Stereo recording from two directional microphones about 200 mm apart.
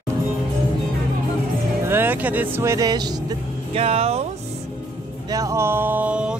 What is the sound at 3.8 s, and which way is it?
Speech, 30° right (ahead or behind).